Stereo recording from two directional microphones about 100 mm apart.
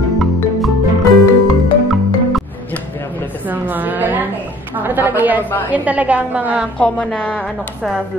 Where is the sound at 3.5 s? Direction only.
20° right (ahead or behind).